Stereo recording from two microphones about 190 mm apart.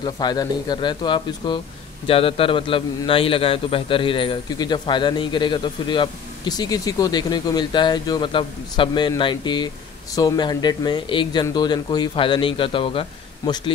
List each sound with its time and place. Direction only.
0.0 s a man's voice: 20° left (ahead or behind)